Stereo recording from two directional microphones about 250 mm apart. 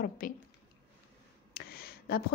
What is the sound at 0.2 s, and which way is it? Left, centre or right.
Speech, left.